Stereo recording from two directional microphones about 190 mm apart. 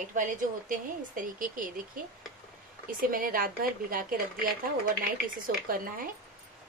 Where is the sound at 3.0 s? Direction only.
45° right (ahead or behind).